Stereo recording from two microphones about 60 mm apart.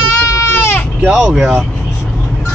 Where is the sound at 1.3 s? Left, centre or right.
Centre.